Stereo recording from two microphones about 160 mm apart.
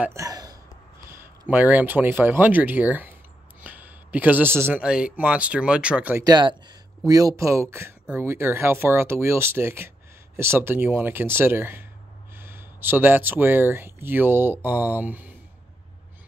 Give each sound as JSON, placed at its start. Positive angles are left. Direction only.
{"t": 0.0, "sound": "a sound", "side_deg": -20}
{"t": 1.1, "sound": "speech", "side_deg": -10}
{"t": 6.2, "sound": "speech", "side_deg": -25}